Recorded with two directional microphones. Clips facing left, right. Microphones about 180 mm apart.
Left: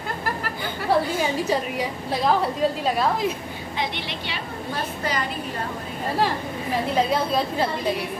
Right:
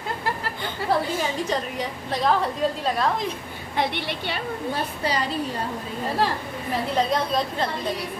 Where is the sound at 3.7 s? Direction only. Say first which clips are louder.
Right 4 dB; 55° right (ahead or behind).